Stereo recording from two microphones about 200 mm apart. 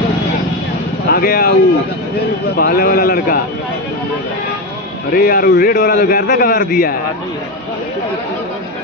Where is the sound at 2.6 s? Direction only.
45° left (ahead or behind).